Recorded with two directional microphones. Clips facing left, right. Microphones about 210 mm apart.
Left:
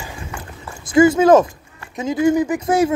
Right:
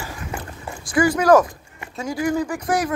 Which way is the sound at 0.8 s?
25° left (ahead or behind).